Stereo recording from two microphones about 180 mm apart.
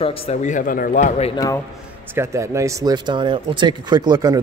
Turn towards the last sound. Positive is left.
turn(degrees=-20)  # may be behind; listen again after turning